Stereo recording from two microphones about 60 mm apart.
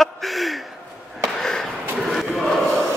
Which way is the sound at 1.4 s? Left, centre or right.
Centre.